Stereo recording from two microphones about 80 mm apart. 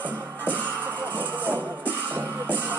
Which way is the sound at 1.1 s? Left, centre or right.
Right.